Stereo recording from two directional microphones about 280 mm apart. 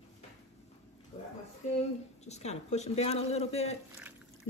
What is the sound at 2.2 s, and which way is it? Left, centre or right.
Speech, left.